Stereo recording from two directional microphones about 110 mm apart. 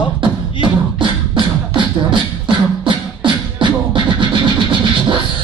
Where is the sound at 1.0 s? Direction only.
50° right (ahead or behind).